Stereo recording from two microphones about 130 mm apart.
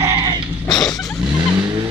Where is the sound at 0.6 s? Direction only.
30° left (ahead or behind).